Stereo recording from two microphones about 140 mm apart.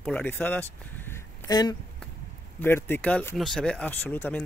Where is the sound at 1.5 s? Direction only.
30° left (ahead or behind).